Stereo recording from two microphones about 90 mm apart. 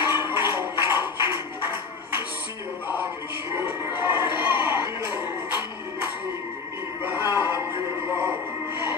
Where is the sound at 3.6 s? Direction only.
25° right (ahead or behind).